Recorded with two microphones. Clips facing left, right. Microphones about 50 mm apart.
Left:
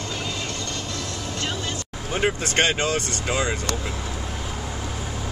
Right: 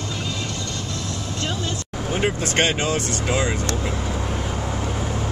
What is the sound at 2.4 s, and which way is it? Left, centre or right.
Speech, centre.